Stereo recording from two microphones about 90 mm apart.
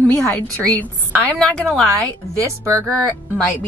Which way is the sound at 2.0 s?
40° right (ahead or behind).